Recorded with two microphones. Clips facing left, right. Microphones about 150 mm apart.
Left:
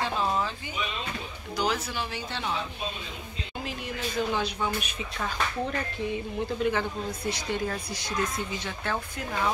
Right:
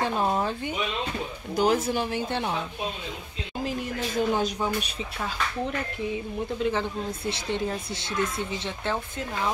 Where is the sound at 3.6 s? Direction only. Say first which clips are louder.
Right 5 dB; 45° right (ahead or behind).